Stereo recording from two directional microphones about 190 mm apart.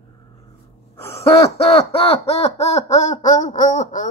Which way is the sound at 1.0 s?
30° left (ahead or behind).